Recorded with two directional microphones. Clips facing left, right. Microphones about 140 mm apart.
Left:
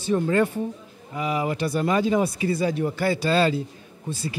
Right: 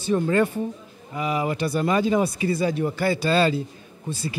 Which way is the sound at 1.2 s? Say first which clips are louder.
Right 1 dB; 15° right (ahead or behind).